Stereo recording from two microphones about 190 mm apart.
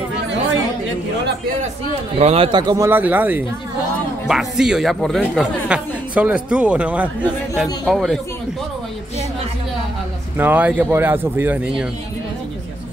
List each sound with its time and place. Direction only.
2.1 s a man's voice: 30° right (ahead or behind)
2.9 s speech: 10° right (ahead or behind)
10.3 s speech: 10° right (ahead or behind)